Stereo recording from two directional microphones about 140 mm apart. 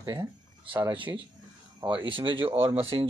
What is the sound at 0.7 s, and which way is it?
Speech, 35° right (ahead or behind).